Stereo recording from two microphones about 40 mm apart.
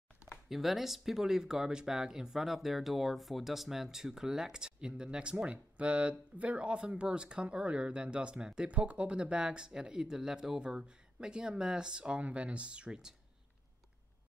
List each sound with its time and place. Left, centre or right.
0.5 s speech: centre
8.6 s speech: right
12.2 s speech: right